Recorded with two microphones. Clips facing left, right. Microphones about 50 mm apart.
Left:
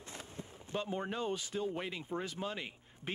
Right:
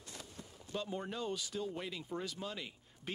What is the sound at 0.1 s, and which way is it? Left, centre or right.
Speech, left.